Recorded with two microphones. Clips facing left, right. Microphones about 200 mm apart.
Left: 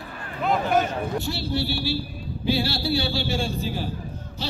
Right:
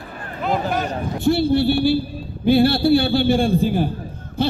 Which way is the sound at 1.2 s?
55° right (ahead or behind).